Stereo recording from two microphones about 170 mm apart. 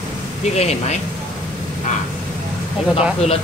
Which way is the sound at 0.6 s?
40° left (ahead or behind).